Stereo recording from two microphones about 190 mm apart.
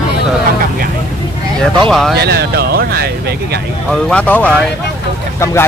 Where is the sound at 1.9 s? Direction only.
Centre (ahead or behind).